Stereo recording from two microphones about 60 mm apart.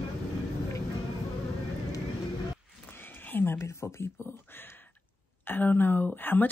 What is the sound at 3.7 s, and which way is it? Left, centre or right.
Speech, left.